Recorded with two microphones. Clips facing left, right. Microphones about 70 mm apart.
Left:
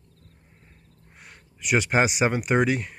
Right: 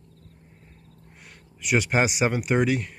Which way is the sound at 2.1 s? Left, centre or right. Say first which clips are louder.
Left 1 dB; left.